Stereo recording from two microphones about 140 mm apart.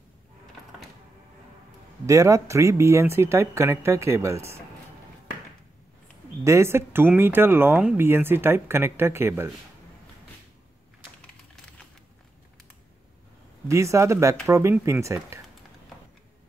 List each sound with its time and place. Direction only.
2.0 s speech: 20° right (ahead or behind)
6.4 s speech: 20° right (ahead or behind)
13.7 s speech: 20° right (ahead or behind)